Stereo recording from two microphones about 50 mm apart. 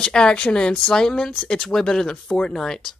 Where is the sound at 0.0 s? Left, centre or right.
Centre.